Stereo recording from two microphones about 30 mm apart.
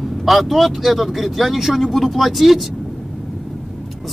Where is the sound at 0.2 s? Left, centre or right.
Centre.